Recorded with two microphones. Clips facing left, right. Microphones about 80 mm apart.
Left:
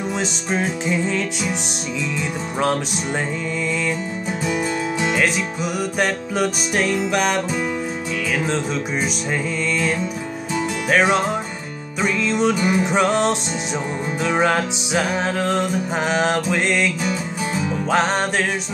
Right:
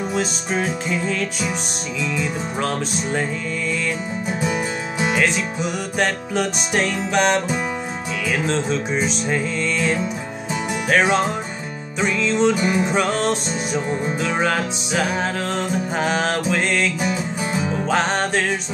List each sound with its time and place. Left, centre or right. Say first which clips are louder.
0.5 s music: left 1 dB; centre
4.5 s music: left 2 dB; centre
5.9 s music: right 1 dB; centre
8.5 s music: right 1 dB; centre